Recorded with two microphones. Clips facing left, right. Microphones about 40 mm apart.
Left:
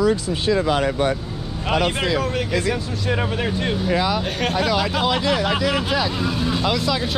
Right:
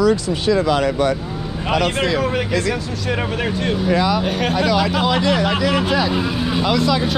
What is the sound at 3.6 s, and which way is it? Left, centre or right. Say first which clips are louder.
Speech: right 4 dB; centre.